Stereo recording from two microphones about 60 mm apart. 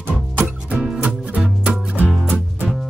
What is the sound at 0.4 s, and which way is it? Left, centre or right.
Music, right.